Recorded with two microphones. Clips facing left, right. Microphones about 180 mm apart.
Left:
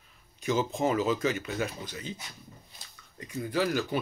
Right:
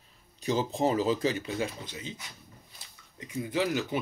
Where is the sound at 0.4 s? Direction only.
35° right (ahead or behind).